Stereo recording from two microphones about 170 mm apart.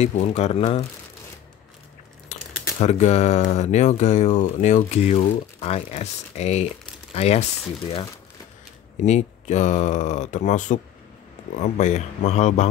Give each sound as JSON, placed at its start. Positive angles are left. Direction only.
{"t": 0.0, "sound": "speech", "side_deg": 40}
{"t": 2.8, "sound": "speech", "side_deg": 40}
{"t": 9.0, "sound": "speech", "side_deg": 45}